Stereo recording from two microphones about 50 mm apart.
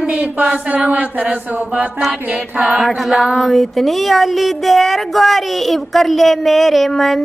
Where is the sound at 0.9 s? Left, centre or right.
Right.